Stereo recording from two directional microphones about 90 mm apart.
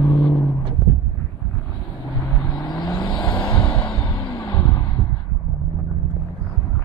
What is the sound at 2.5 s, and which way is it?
Vehicle, 55° left (ahead or behind).